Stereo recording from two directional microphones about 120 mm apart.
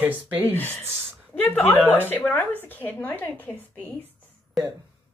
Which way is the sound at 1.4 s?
15° left (ahead or behind).